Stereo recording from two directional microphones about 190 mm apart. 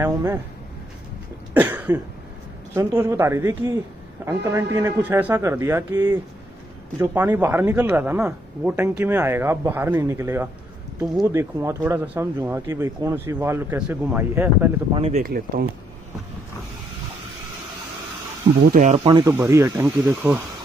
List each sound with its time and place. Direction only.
0.0 s speech: 15° right (ahead or behind)
1.5 s cough: 10° right (ahead or behind)
2.7 s speech: 15° right (ahead or behind)
15.0 s speech: 30° right (ahead or behind)
15.2 s speech: 50° right (ahead or behind)
18.7 s speech: 40° right (ahead or behind)
19.0 s speech: 20° right (ahead or behind)